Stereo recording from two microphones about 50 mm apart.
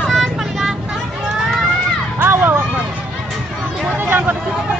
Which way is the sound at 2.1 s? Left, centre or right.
Right.